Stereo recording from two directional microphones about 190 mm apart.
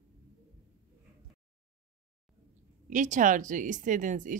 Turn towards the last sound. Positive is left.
turn(degrees=-45)  # may be behind; listen again after turning